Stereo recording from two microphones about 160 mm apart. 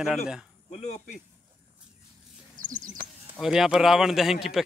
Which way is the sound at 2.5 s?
55° right (ahead or behind).